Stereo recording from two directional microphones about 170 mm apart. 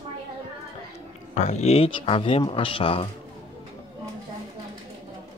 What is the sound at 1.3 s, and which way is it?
Speech, 45° left (ahead or behind).